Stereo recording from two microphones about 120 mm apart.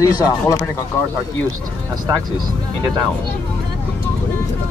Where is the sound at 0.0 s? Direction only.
30° left (ahead or behind).